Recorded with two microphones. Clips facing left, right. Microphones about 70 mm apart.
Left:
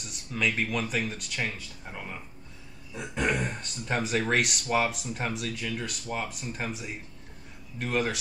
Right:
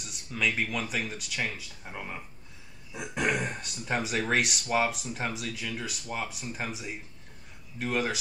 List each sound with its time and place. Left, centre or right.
0.0 s speech: centre